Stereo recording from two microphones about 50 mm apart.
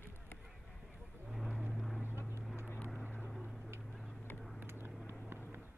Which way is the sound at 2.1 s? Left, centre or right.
Left.